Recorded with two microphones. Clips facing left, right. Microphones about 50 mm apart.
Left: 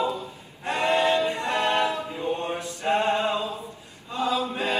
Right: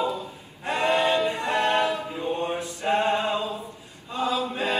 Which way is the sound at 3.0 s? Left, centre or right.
Centre.